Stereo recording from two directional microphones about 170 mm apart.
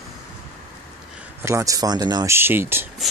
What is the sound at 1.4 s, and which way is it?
Speech, 15° right (ahead or behind).